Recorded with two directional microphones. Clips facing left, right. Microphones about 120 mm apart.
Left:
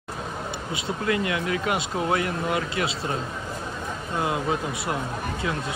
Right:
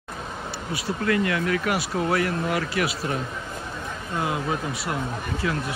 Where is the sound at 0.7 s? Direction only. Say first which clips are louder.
Right 2 dB; 20° left (ahead or behind).